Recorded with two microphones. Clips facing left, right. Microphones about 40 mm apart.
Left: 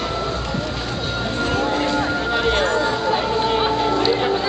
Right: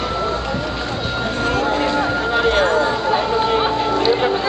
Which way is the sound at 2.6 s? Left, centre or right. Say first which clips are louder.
Right 3 dB; centre.